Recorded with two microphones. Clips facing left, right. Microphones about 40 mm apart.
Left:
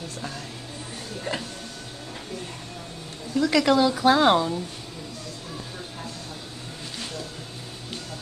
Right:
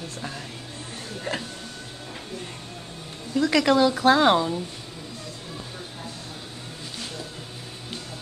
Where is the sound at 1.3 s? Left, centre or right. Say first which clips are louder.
Even; right.